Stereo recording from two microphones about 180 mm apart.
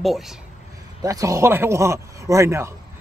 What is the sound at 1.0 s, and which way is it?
A man's voice, 20° right (ahead or behind).